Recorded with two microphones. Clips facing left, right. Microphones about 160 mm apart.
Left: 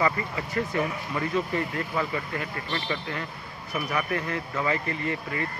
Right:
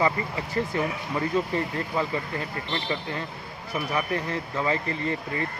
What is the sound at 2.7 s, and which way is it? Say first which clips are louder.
Speech: right 1 dB; 25° right (ahead or behind).